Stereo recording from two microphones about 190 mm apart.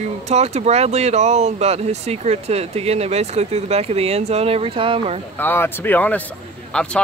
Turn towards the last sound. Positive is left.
turn(degrees=5)  # may be behind; listen again after turning